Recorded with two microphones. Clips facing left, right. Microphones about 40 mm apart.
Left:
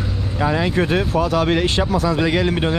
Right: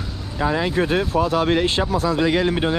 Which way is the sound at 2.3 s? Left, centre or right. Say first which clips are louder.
Left 1 dB; left.